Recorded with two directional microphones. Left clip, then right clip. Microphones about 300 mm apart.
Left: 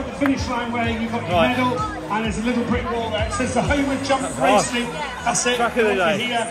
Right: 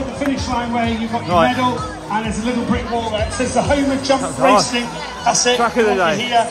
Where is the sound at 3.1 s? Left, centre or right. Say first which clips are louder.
Right 3 dB; right.